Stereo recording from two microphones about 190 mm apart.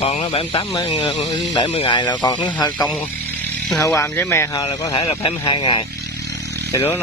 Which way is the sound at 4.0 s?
15° left (ahead or behind).